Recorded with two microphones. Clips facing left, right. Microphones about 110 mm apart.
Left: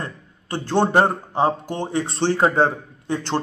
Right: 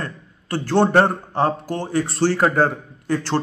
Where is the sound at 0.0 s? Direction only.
20° left (ahead or behind).